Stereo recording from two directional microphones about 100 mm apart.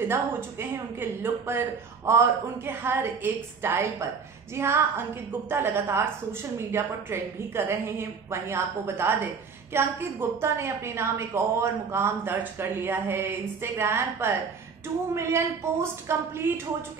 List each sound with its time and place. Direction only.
0.1 s a woman's voice: 25° right (ahead or behind)